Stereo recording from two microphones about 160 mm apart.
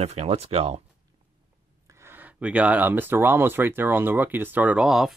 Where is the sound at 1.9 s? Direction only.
15° right (ahead or behind).